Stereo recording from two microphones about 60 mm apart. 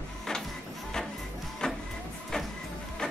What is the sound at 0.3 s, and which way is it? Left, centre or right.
Music, centre.